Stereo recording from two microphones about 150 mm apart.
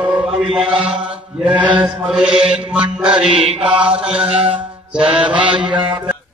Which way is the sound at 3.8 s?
5° right (ahead or behind).